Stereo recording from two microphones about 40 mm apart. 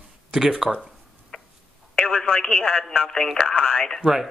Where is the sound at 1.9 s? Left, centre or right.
Left.